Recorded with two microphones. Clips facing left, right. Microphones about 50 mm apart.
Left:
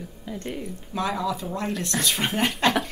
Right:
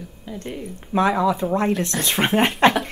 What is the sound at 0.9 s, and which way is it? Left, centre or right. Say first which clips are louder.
Speech: right 8 dB; right.